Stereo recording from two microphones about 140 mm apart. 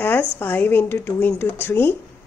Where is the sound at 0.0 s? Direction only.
15° left (ahead or behind).